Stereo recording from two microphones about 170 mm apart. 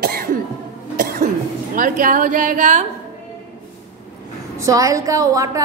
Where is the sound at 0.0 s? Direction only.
60° right (ahead or behind).